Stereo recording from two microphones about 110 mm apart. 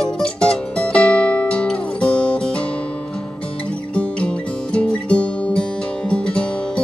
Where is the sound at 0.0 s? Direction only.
5° left (ahead or behind).